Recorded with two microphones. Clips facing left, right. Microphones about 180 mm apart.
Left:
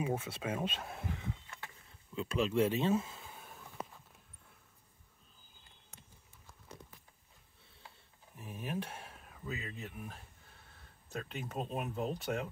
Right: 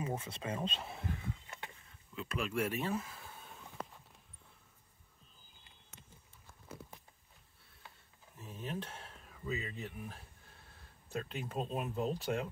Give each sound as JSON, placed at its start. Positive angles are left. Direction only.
{"t": 0.0, "sound": "speech", "side_deg": 10}
{"t": 2.1, "sound": "speech", "side_deg": 25}
{"t": 8.4, "sound": "speech", "side_deg": 10}